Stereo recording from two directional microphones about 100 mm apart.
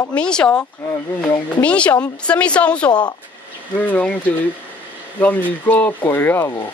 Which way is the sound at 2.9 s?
45° left (ahead or behind).